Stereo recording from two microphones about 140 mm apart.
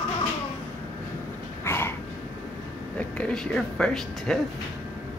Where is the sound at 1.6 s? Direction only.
15° left (ahead or behind).